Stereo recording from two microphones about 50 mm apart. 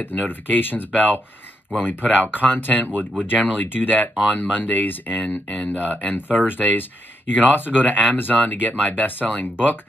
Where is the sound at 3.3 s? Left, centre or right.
Left.